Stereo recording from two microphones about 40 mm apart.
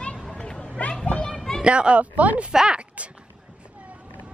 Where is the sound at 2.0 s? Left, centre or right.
Right.